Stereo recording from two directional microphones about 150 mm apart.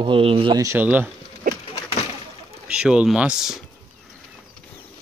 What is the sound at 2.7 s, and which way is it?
Speech, 5° right (ahead or behind).